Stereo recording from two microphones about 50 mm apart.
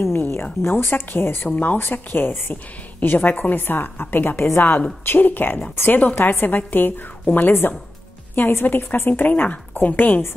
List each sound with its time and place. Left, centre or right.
0.0 s a woman's voice: left